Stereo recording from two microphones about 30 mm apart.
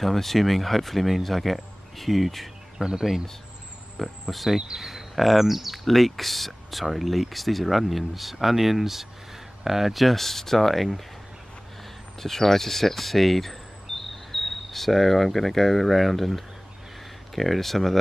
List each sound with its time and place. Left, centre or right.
0.0 s speech: centre
2.8 s speech: centre
4.0 s speech: centre
5.9 s speech: centre
12.2 s speech: centre
17.4 s speech: centre